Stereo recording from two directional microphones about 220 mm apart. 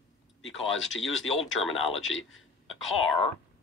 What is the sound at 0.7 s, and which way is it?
Speech, 60° left (ahead or behind).